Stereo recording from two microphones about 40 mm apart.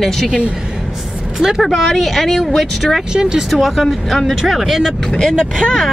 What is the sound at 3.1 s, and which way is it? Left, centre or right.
Speech, centre.